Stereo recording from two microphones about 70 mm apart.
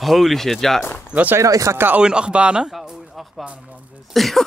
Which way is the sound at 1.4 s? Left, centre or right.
Right.